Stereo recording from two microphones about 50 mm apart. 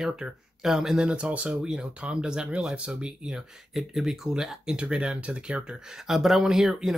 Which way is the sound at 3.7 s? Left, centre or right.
Centre.